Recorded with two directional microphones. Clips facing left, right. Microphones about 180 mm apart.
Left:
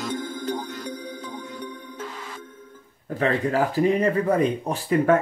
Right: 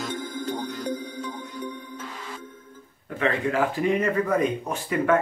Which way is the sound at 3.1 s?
35° left (ahead or behind).